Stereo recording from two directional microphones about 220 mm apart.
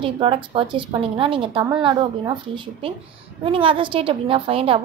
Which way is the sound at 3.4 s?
25° right (ahead or behind).